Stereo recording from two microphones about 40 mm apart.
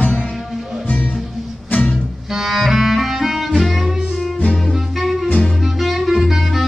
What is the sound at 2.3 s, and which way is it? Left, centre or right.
Music, centre.